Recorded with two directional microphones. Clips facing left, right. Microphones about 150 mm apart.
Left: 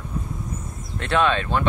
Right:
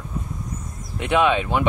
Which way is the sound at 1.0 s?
15° right (ahead or behind).